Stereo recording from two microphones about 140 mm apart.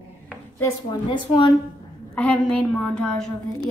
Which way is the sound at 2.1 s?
10° left (ahead or behind).